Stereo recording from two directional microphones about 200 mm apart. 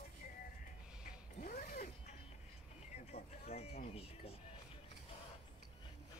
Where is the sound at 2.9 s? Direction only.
30° left (ahead or behind).